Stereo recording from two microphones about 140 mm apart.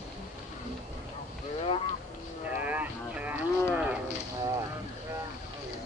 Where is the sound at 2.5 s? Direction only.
10° right (ahead or behind).